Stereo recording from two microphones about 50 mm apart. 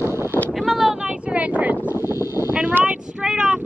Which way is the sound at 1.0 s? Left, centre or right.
Right.